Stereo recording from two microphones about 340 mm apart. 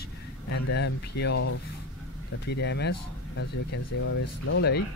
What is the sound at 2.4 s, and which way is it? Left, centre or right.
Speech, left.